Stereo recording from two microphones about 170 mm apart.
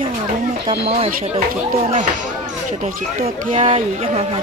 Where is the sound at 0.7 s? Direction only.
35° right (ahead or behind).